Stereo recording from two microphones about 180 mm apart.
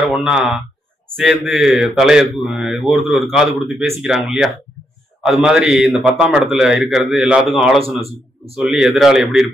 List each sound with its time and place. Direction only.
0.0 s speech: 5° right (ahead or behind)
7.8 s a man's voice: 35° right (ahead or behind)
8.5 s speech: 5° right (ahead or behind)